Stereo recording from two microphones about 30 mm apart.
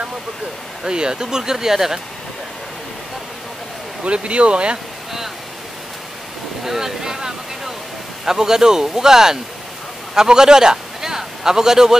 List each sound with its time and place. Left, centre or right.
0.8 s speech: right
4.0 s speech: right
6.6 s a man's voice: centre